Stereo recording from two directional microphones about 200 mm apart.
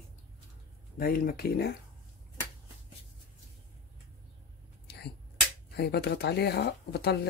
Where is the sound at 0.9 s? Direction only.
45° left (ahead or behind).